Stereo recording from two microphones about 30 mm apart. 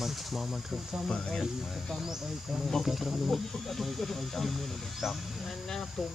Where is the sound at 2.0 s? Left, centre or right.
Centre.